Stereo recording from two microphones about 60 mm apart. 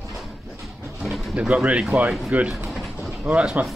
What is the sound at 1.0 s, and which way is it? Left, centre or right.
Bird, centre.